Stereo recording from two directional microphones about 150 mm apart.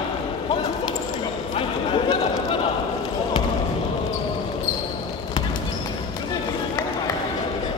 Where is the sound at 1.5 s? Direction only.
35° left (ahead or behind).